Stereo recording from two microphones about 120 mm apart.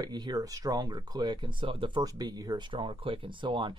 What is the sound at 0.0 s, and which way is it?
Speech, 35° right (ahead or behind).